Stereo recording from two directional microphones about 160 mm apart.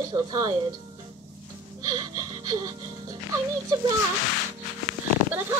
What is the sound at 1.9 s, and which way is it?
Music, 25° right (ahead or behind).